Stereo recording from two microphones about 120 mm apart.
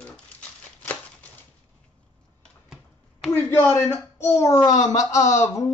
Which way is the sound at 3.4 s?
20° left (ahead or behind).